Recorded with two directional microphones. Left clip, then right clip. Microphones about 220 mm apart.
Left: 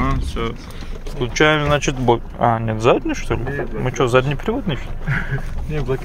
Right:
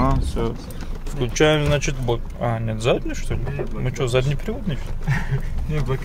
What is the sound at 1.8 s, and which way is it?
Speech, 5° left (ahead or behind).